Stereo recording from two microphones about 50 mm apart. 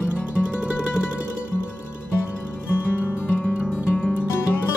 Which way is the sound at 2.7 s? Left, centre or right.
Left.